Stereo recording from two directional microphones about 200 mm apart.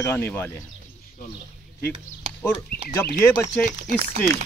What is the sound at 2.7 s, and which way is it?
Speech, 50° left (ahead or behind).